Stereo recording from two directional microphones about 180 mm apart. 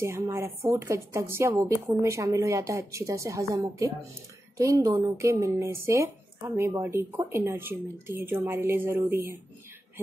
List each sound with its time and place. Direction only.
0.0 s speech: 15° right (ahead or behind)